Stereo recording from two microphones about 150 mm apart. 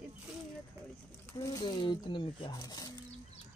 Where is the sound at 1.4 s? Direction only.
25° left (ahead or behind).